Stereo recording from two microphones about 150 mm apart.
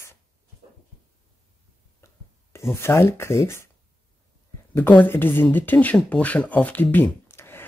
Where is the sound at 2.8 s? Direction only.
15° left (ahead or behind).